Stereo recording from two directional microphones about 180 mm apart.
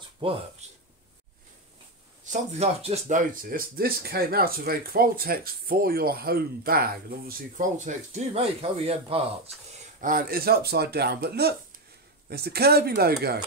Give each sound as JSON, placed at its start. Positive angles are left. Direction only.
{"t": 0.2, "sound": "speech", "side_deg": -30}
{"t": 2.5, "sound": "speech", "side_deg": -35}
{"t": 9.9, "sound": "speech", "side_deg": -50}